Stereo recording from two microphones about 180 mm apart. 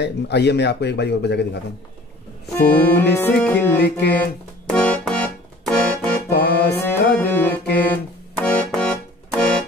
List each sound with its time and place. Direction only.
0.0 s speech: 70° left (ahead or behind)
2.7 s music: 10° left (ahead or behind)
6.3 s music: 60° left (ahead or behind)
6.7 s music: 10° left (ahead or behind)